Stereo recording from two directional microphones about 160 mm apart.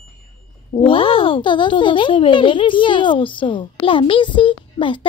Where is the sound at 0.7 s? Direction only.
35° left (ahead or behind).